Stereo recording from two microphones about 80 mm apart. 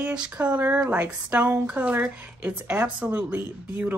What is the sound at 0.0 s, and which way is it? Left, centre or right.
Speech, centre.